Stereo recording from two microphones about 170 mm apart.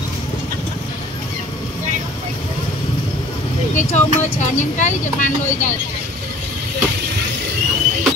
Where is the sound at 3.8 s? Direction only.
45° left (ahead or behind).